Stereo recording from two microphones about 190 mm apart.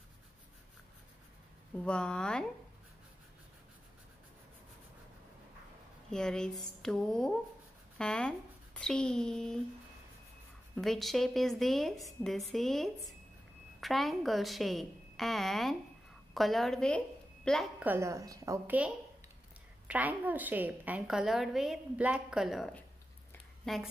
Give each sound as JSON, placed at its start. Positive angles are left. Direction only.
{"t": 1.8, "sound": "a woman's voice", "side_deg": 5}
{"t": 6.0, "sound": "a woman's voice", "side_deg": 5}
{"t": 10.8, "sound": "a woman's voice", "side_deg": 0}
{"t": 17.8, "sound": "a woman's voice", "side_deg": -15}
{"t": 19.9, "sound": "a woman's voice", "side_deg": -10}